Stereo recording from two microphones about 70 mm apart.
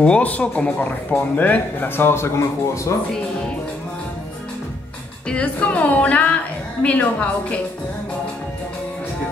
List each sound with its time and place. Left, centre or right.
0.0 s speech: centre; by 2.9 s left
5.3 s a woman's voice: centre